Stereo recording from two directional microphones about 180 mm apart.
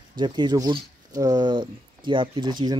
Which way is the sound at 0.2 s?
25° right (ahead or behind).